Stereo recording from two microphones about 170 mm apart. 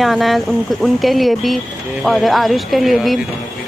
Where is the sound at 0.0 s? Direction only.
Centre (ahead or behind).